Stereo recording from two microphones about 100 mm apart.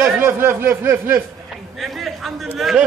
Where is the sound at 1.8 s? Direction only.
Centre (ahead or behind).